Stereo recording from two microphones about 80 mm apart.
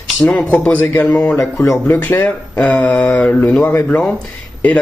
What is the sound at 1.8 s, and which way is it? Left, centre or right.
Speech, left.